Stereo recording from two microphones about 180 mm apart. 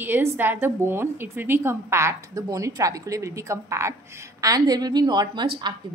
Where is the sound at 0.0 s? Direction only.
10° right (ahead or behind).